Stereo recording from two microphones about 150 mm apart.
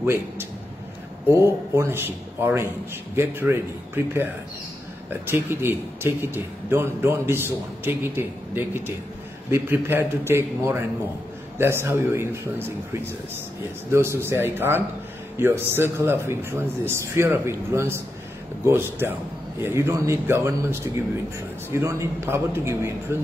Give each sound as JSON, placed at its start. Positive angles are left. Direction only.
{"t": 0.0, "sound": "a man's voice", "side_deg": -15}